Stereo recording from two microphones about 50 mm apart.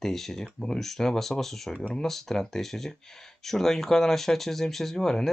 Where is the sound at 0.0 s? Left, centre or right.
Centre.